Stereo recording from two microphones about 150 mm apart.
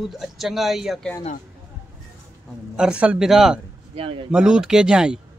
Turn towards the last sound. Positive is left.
turn(degrees=-5)  # may be behind; listen again after turning